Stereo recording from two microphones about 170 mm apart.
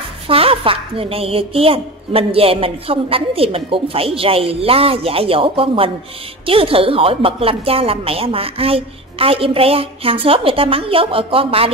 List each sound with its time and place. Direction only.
0.3 s a woman's voice: 35° right (ahead or behind)